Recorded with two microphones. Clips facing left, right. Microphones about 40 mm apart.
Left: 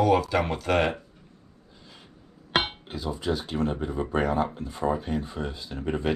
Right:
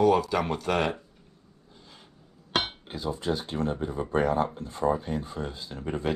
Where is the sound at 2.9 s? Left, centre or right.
Left.